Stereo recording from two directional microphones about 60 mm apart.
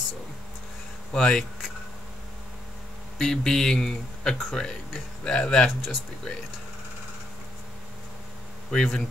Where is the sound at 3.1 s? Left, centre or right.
Centre.